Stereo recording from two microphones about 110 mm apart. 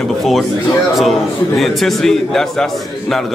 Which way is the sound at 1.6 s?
Centre (ahead or behind).